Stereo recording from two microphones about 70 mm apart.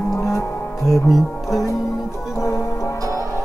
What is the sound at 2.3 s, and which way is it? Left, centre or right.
Music, left.